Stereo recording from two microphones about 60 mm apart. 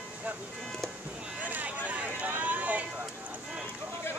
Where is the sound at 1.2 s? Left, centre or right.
Centre.